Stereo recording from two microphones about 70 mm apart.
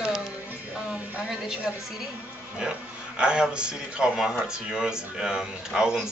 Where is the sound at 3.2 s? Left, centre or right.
Centre.